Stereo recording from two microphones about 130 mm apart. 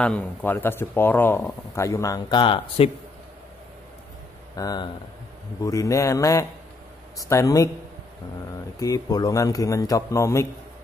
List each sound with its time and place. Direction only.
0.0 s a man's voice: 10° left (ahead or behind); by 2.9 s 40° left (ahead or behind)
4.6 s a man's voice: 30° left (ahead or behind)
8.7 s a man's voice: 25° left (ahead or behind)